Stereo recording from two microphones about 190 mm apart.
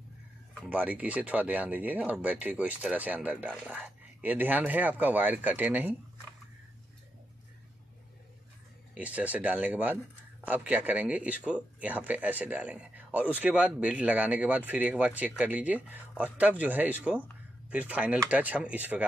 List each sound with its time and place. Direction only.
0.6 s speech: 5° right (ahead or behind)
8.9 s speech: 5° right (ahead or behind)